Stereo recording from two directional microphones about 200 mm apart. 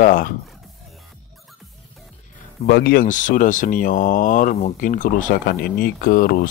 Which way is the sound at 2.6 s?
55° left (ahead or behind).